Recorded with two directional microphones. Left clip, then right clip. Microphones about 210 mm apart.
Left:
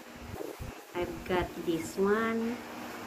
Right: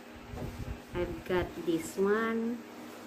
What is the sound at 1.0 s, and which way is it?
Speech, centre (ahead or behind).